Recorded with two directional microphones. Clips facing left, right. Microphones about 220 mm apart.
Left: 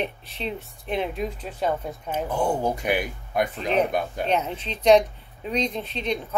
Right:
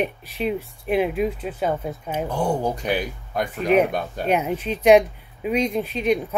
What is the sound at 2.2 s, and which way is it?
Speech, 10° left (ahead or behind).